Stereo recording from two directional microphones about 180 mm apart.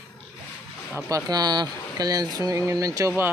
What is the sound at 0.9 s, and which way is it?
Speech, 20° right (ahead or behind).